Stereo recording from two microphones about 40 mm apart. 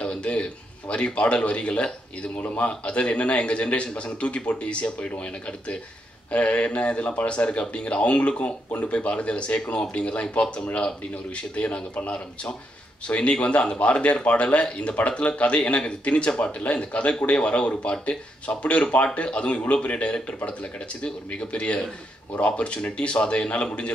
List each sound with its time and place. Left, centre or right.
0.0 s a man's voice: left